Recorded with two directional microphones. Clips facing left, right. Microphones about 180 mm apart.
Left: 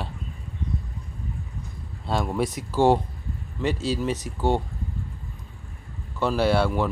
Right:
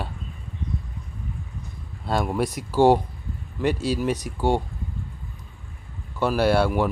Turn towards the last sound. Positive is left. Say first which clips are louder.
# right 2 dB
turn(degrees=-10)  # may be behind; listen again after turning